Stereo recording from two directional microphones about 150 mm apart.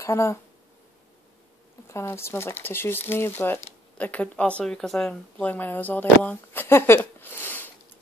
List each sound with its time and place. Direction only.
0.0 s speech: 20° left (ahead or behind)
1.9 s speech: 15° left (ahead or behind)